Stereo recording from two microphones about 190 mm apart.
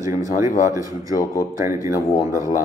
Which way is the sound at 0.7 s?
15° right (ahead or behind).